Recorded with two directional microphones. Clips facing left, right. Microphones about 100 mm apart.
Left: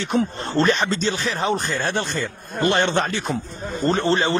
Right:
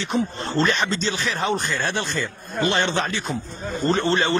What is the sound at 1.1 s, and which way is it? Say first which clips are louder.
Speech: left 1 dB; 30° left (ahead or behind).